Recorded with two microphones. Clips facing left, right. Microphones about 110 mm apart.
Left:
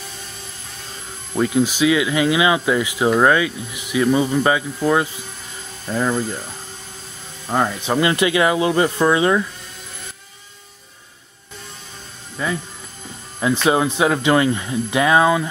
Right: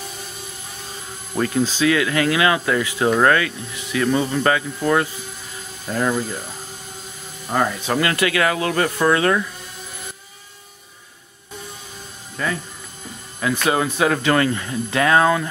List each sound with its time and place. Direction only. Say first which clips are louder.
1.4 s speech: left 2 dB; 15° left (ahead or behind)
5.9 s speech: left 1 dB; centre (ahead or behind)
7.4 s speech: left 1 dB; 15° left (ahead or behind)
12.4 s speech: left 1 dB; 15° left (ahead or behind)
13.7 s speech: left 2 dB; 15° left (ahead or behind)